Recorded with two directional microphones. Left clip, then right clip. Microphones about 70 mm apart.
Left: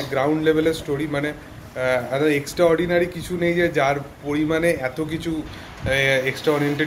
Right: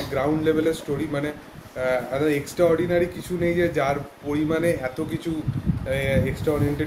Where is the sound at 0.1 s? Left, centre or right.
Right.